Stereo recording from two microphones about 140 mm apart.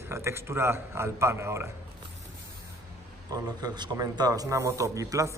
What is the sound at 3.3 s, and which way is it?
A man's voice, 30° right (ahead or behind).